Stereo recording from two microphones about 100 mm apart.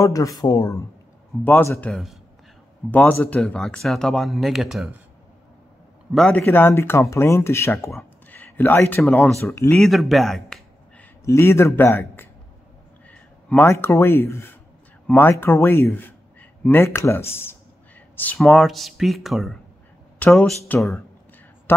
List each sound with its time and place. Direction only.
0.0 s speech: 35° left (ahead or behind)
1.4 s speech: 25° left (ahead or behind)
1.8 s speech: 5° left (ahead or behind)
2.9 s speech: 15° left (ahead or behind); by 4.8 s 5° right (ahead or behind)
6.1 s speech: 5° left (ahead or behind)
6.4 s speech: 20° left (ahead or behind)
9.7 s speech: centre (ahead or behind)
11.2 s speech: 25° left (ahead or behind)
13.1 s a sound: 15° left (ahead or behind)
13.7 s a man's voice: 25° left (ahead or behind)
18.4 s speech: 5° left (ahead or behind)
20.2 s a woman's voice: 10° left (ahead or behind)